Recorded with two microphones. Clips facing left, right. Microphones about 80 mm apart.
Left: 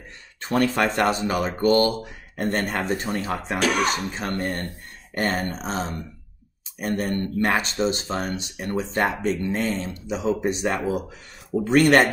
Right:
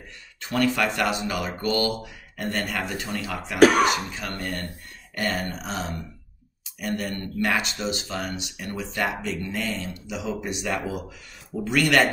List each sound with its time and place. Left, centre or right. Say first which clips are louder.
0.4 s speech: left 2 dB; left
3.5 s speech: right 8 dB; right
3.8 s speech: right 1 dB; left